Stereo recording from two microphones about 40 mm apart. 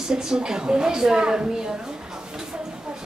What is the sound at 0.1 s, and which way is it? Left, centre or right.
A woman's voice, centre.